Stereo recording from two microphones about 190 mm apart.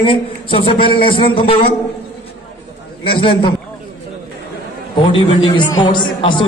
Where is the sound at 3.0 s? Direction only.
25° left (ahead or behind).